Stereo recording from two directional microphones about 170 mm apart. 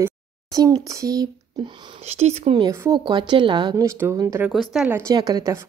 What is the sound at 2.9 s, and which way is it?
Speech, 25° right (ahead or behind).